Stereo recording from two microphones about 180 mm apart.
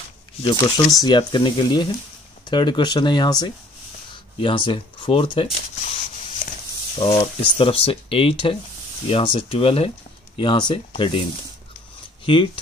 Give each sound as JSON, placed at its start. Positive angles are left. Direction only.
{"t": 0.4, "sound": "speech", "side_deg": 25}
{"t": 7.0, "sound": "speech", "side_deg": 30}
{"t": 12.3, "sound": "speech", "side_deg": 25}